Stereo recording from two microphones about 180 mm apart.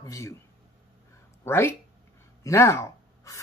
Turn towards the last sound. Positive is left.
turn(degrees=15)  # may be behind; listen again after turning